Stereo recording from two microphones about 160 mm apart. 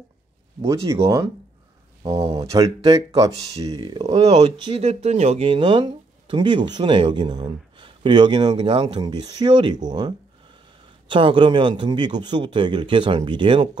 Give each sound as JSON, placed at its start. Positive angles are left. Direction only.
{"t": 1.0, "sound": "speech", "side_deg": -20}
{"t": 4.7, "sound": "speech", "side_deg": -40}